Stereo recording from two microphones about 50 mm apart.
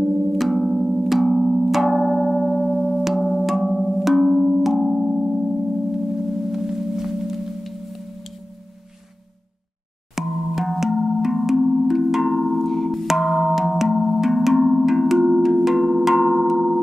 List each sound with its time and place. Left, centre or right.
0.0 s music: centre
5.9 s singing bowl: centre
10.1 s music: centre